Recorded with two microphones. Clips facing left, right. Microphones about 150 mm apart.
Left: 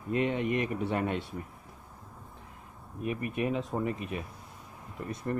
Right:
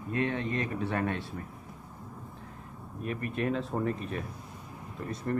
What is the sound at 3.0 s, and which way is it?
Speech, 15° left (ahead or behind).